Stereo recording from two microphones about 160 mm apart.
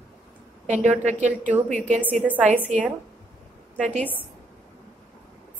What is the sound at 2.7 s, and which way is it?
Speech, 45° right (ahead or behind).